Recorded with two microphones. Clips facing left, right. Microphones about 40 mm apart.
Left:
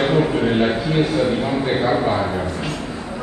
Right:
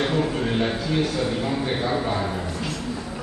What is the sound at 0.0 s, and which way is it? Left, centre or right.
A man's voice, left.